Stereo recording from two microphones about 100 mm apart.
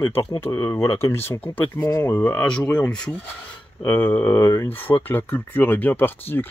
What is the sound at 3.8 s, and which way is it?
Speech, 20° left (ahead or behind).